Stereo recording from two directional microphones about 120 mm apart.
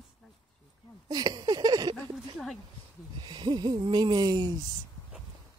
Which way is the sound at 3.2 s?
40° right (ahead or behind).